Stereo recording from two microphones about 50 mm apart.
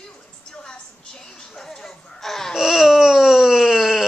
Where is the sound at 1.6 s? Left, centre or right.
Centre.